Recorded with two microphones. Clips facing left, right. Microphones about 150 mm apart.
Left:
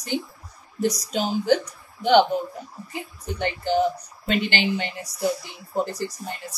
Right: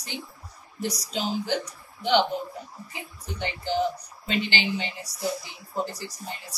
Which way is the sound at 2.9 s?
55° left (ahead or behind).